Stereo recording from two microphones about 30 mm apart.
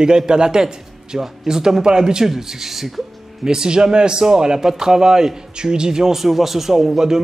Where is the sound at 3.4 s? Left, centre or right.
Right.